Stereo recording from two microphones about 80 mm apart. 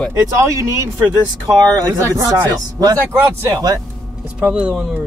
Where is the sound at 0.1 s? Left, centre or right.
Right.